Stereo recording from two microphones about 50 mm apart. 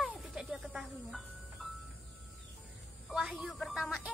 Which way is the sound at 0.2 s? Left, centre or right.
Centre.